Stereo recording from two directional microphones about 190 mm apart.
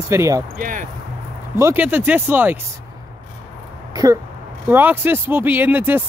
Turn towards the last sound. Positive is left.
turn(degrees=-10)  # may be behind; listen again after turning